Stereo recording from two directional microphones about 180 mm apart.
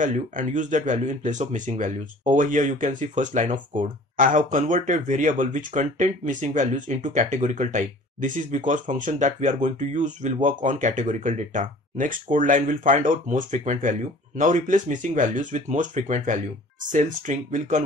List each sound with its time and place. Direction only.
0.0 s speech: 45° right (ahead or behind)